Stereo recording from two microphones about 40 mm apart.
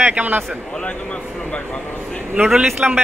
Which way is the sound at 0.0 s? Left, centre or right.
Right.